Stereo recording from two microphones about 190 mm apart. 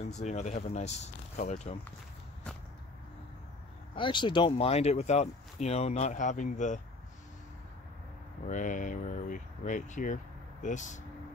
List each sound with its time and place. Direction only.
0.0 s speech: 35° left (ahead or behind)
3.9 s speech: 25° left (ahead or behind); by 6.8 s 40° left (ahead or behind)
8.5 s speech: 45° left (ahead or behind)